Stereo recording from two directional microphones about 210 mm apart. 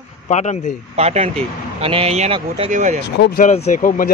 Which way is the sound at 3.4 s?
35° left (ahead or behind).